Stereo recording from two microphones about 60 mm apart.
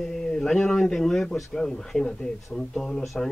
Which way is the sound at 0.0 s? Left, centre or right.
Centre.